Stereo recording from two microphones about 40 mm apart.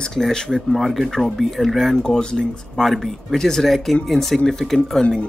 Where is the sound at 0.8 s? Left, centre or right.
Centre.